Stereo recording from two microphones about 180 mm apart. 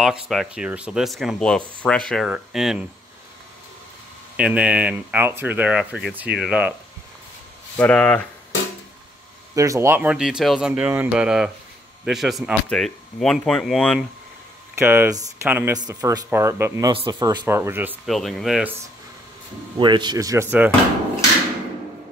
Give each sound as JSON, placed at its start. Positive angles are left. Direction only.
{"t": 0.0, "sound": "speech", "side_deg": 0}
{"t": 4.4, "sound": "speech", "side_deg": -5}
{"t": 7.7, "sound": "speech", "side_deg": 5}
{"t": 9.6, "sound": "speech", "side_deg": -15}
{"t": 14.8, "sound": "speech", "side_deg": -15}
{"t": 15.7, "sound": "speech", "side_deg": -20}
{"t": 16.9, "sound": "speech", "side_deg": -30}
{"t": 17.2, "sound": "speech", "side_deg": -15}
{"t": 18.0, "sound": "speech", "side_deg": 0}
{"t": 19.8, "sound": "speech", "side_deg": -25}